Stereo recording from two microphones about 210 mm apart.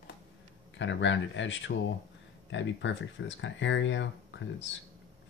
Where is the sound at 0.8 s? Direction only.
60° left (ahead or behind).